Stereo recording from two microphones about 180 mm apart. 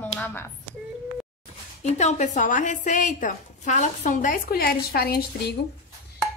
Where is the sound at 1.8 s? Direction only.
40° left (ahead or behind); by 5.2 s 60° left (ahead or behind).